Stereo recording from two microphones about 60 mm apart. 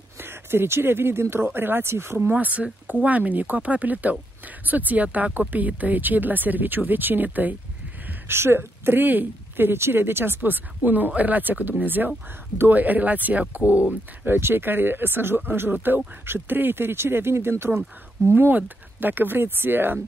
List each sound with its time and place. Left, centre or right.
0.2 s speech: right
2.3 s speech: right
8.3 s speech: right
14.2 s speech: right